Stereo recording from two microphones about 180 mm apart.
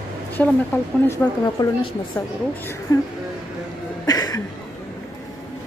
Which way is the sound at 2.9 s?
20° left (ahead or behind).